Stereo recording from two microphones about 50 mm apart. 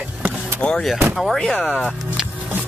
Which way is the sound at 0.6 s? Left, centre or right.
Left.